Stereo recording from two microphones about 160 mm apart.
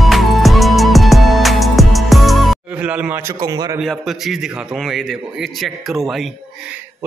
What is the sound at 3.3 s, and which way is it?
Speech, 25° right (ahead or behind).